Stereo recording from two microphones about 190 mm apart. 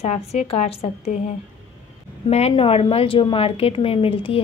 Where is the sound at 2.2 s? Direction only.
30° left (ahead or behind).